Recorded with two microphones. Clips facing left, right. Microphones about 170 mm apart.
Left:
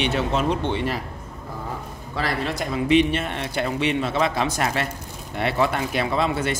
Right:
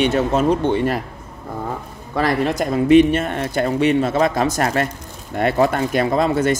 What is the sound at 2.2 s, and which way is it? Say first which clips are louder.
Speech: right 7 dB; 50° right (ahead or behind).